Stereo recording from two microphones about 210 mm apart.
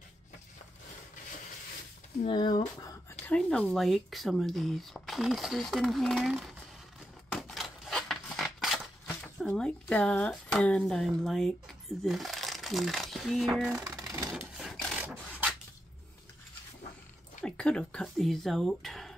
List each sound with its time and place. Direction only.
2.2 s speech: 20° left (ahead or behind)
3.3 s speech: 5° left (ahead or behind)
7.3 s a sound: centre (ahead or behind)
9.4 s speech: 5° left (ahead or behind)
14.0 s a sound: 15° right (ahead or behind)
14.3 s filing: centre (ahead or behind)
17.4 s speech: 5° left (ahead or behind)